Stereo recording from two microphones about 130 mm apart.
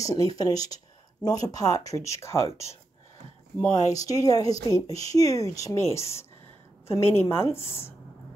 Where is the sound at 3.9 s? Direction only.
25° left (ahead or behind).